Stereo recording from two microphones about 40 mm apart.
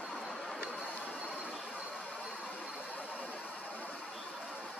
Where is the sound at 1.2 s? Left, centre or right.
Right.